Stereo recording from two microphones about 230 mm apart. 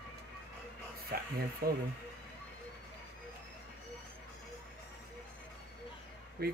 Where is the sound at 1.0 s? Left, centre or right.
Right.